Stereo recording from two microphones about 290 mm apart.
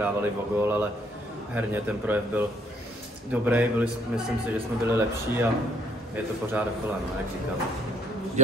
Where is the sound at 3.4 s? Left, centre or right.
Centre.